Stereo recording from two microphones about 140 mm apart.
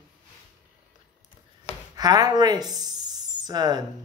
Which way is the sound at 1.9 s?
30° right (ahead or behind).